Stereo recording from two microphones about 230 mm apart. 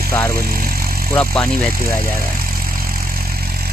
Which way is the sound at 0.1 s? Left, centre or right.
Centre.